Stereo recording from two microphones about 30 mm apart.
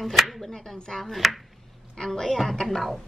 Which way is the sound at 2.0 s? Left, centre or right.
Centre.